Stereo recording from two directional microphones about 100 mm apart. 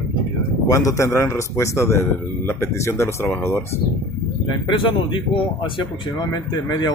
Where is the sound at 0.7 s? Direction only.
35° left (ahead or behind).